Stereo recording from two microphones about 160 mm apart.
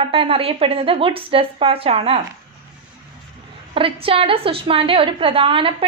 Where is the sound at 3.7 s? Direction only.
35° right (ahead or behind).